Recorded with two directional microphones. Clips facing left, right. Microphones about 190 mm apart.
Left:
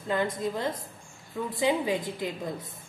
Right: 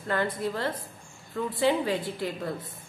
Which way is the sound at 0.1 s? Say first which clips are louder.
Even; 15° left (ahead or behind).